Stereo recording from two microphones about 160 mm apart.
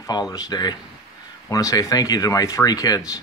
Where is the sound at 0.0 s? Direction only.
25° left (ahead or behind).